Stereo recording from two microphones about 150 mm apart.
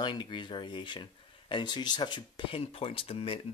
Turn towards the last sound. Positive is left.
turn(degrees=40)  # may be behind; listen again after turning